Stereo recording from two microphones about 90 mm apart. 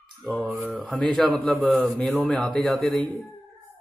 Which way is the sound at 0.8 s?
15° left (ahead or behind).